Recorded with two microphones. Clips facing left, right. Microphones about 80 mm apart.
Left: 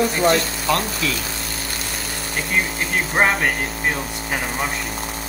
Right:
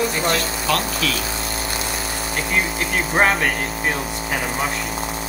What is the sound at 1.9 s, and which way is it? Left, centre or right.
Speech, centre.